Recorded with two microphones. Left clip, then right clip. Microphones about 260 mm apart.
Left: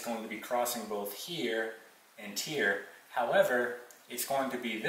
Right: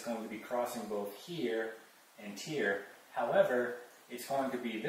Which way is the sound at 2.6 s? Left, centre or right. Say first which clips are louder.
Left 3 dB; centre.